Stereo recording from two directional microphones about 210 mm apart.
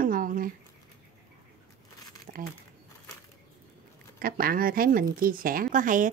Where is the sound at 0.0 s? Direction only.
40° right (ahead or behind).